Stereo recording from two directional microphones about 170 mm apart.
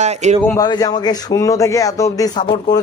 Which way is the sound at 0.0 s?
40° right (ahead or behind).